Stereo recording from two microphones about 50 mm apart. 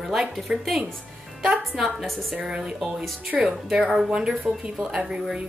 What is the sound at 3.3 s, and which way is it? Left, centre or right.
Speech, centre.